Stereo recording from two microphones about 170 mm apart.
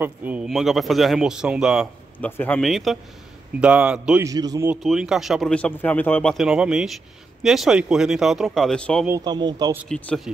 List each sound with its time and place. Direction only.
0.0 s speech: 10° right (ahead or behind)
2.1 s speech: 10° left (ahead or behind); by 4.3 s 5° right (ahead or behind)
4.3 s speech: 20° right (ahead or behind)
4.6 s speech: 5° right (ahead or behind)
6.3 s speech: 5° right (ahead or behind)
9.2 s speech: 25° right (ahead or behind)
9.8 s speech: 5° left (ahead or behind)